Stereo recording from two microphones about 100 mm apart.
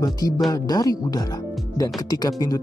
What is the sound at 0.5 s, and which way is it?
Speech, 40° left (ahead or behind).